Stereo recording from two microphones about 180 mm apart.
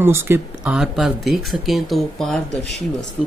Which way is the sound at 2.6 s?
40° right (ahead or behind).